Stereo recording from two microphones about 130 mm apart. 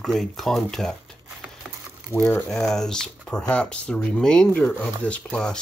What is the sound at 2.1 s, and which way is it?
Speech, 20° left (ahead or behind).